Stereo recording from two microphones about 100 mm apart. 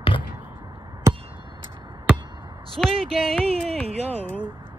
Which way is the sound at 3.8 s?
90° right.